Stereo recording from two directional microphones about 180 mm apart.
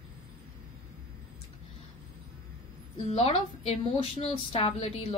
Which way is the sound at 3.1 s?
35° left (ahead or behind).